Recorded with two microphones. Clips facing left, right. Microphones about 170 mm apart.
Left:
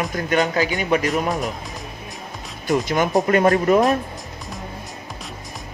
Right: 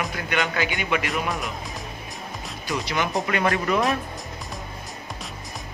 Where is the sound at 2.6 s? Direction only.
45° left (ahead or behind).